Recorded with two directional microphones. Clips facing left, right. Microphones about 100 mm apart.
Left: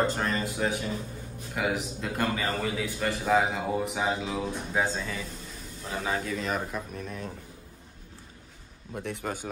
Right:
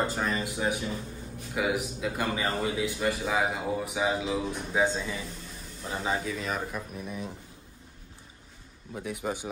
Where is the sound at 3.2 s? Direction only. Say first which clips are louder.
Left 3 dB; centre (ahead or behind).